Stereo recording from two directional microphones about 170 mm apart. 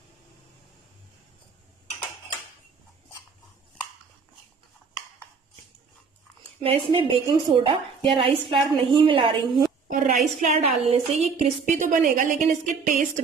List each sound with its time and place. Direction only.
6.6 s a woman's voice: 35° right (ahead or behind)
9.8 s a sound: 55° right (ahead or behind)
10.4 s a woman's voice: 45° right (ahead or behind)